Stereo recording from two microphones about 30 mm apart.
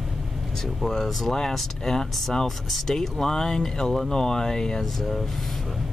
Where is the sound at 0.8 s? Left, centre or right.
Centre.